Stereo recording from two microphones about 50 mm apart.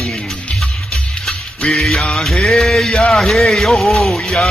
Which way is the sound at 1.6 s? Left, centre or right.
Left.